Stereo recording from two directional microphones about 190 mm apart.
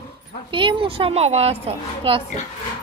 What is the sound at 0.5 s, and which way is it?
A woman's voice, 25° right (ahead or behind).